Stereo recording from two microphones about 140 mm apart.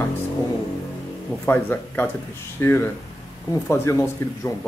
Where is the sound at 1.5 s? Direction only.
15° left (ahead or behind).